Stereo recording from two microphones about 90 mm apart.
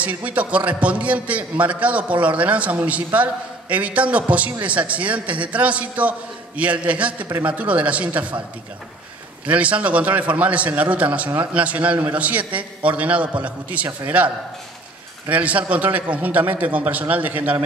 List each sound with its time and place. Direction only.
0.0 s a man's voice: 15° right (ahead or behind)
9.5 s a man's voice: 15° right (ahead or behind)